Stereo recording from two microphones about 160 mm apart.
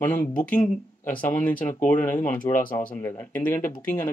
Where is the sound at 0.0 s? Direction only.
15° left (ahead or behind).